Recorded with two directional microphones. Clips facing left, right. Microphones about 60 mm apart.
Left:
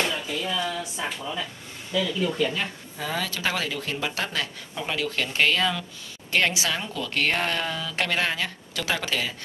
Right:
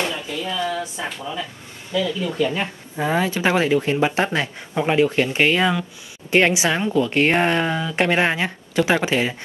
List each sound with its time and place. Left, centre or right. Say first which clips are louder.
0.1 s a sound: right 2 dB; centre
0.7 s speech: right 5 dB; right
1.0 s speech: right 2 dB; centre
2.5 s speech: right 5 dB; right